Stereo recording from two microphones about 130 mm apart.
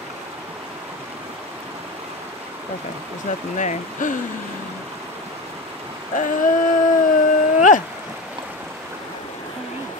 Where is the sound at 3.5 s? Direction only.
70° left (ahead or behind).